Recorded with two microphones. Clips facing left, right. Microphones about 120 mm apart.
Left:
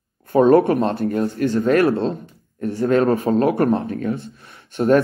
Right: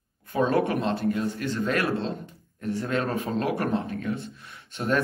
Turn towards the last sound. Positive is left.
turn(degrees=45)  # may be behind; listen again after turning